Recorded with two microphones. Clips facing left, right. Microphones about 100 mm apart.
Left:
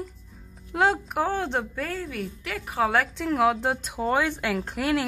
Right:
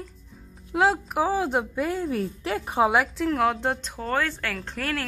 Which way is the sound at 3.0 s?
Centre (ahead or behind).